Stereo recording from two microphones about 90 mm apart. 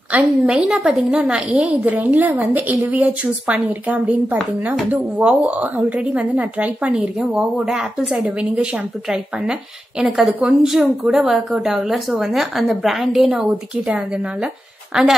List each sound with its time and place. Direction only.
0.1 s a woman's voice: 10° right (ahead or behind)